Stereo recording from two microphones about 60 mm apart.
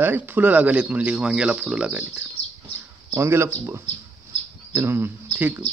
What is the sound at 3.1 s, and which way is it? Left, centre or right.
Speech, right.